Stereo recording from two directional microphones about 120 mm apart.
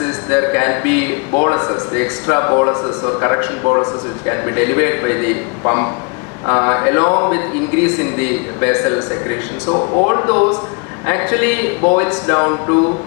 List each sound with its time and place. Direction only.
0.0 s a man's voice: 20° left (ahead or behind)